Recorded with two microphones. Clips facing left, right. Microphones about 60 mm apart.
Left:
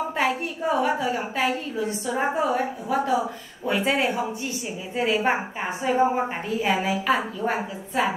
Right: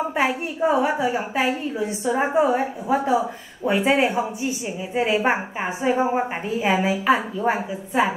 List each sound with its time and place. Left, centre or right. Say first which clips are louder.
0.1 s a woman's voice: right 2 dB; centre